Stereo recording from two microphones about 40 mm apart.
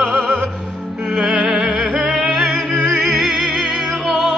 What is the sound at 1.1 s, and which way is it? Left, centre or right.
Music, right.